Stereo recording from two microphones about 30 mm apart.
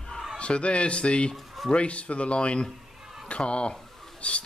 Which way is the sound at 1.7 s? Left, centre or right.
Left.